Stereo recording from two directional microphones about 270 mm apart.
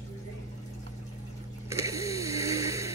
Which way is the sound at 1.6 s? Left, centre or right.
Centre.